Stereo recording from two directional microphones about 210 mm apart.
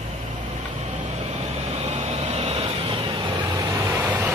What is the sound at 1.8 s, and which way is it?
Vehicle, 30° right (ahead or behind).